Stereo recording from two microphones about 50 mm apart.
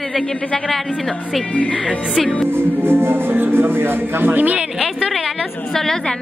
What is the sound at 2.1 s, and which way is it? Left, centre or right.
Speech, centre.